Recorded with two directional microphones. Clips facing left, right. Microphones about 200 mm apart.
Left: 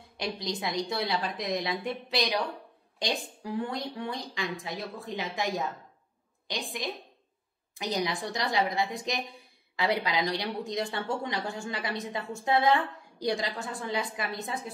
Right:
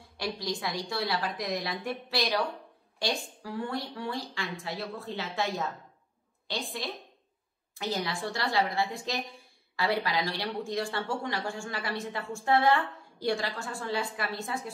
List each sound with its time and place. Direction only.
0.2 s a woman's voice: 20° left (ahead or behind)
6.8 s a woman's voice: 15° left (ahead or behind)